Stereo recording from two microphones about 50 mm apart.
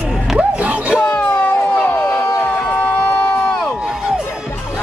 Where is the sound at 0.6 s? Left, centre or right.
Right.